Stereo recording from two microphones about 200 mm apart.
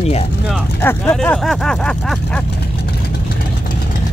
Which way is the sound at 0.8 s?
10° left (ahead or behind).